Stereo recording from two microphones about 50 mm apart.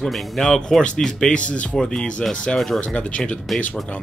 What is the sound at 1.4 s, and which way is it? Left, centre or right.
Speech, left.